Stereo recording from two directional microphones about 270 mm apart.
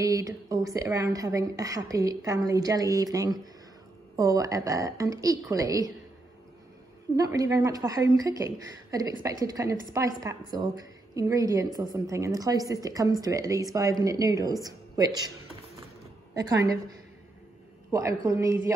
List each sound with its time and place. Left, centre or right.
0.0 s a woman's voice: centre
7.2 s a woman's voice: centre
16.3 s a woman's voice: centre
17.9 s a woman's voice: centre